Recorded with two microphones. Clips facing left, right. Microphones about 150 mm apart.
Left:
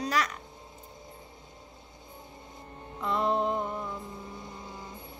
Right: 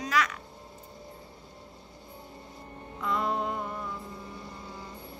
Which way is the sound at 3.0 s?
30° left (ahead or behind).